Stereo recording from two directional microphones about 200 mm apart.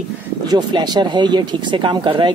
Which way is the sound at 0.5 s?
20° right (ahead or behind).